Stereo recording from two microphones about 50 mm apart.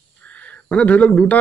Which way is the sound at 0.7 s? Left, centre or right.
Left.